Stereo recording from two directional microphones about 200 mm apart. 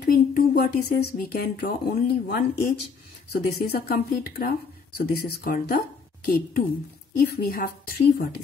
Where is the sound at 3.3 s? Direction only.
50° left (ahead or behind).